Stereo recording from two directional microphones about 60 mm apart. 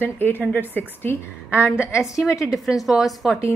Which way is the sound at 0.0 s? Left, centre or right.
Left.